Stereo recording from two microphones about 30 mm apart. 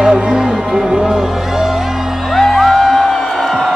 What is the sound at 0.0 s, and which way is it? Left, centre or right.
Music, right.